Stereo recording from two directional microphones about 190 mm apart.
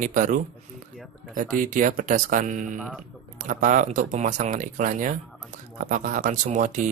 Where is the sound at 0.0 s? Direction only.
40° right (ahead or behind).